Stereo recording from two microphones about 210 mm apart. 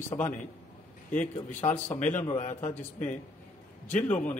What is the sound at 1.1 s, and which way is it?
A man's voice, 30° left (ahead or behind).